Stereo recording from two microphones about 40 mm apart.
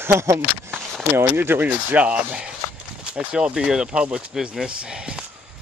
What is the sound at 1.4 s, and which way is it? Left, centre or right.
Speech, right.